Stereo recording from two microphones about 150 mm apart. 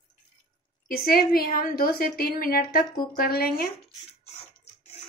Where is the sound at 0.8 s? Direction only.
85° left.